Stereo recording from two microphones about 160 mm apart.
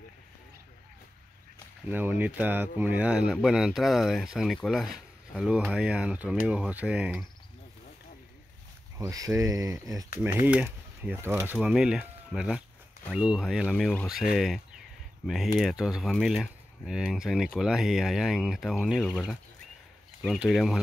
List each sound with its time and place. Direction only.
1.9 s speech: 10° right (ahead or behind)
8.9 s speech: 20° right (ahead or behind)
10.4 s speech: 10° right (ahead or behind)
20.2 s speech: 5° right (ahead or behind)